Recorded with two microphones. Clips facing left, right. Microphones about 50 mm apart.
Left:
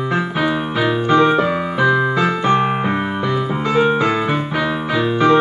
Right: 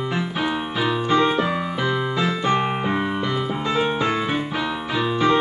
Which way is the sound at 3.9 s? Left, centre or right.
Left.